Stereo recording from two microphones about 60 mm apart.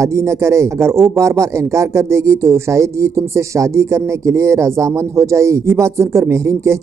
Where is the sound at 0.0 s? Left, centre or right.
Right.